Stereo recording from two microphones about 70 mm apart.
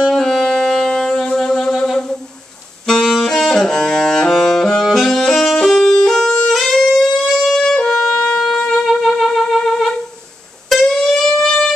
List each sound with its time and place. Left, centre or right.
0.1 s music: centre
2.9 s saxophone: centre
8.8 s music: centre
10.7 s a sound: centre